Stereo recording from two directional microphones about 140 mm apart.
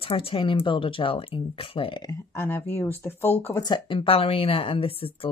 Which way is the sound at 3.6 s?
35° left (ahead or behind).